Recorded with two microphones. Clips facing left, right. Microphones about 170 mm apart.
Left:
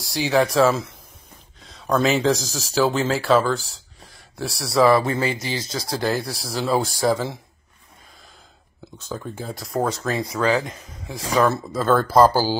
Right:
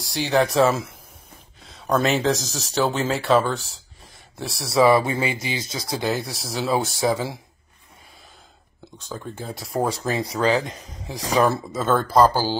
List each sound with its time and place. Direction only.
0.0 s speech: centre (ahead or behind)
9.1 s speech: centre (ahead or behind)
9.8 s speech: 10° right (ahead or behind)
10.3 s speech: 30° right (ahead or behind)
11.3 s speech: 15° right (ahead or behind)
11.7 s speech: centre (ahead or behind)